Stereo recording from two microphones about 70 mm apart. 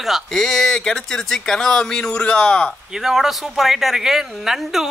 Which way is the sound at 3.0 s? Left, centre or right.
Centre.